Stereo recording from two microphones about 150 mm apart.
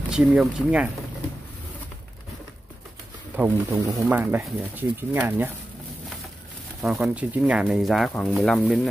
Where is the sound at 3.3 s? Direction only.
10° right (ahead or behind).